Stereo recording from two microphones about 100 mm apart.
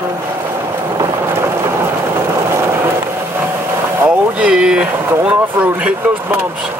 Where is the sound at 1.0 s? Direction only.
25° right (ahead or behind).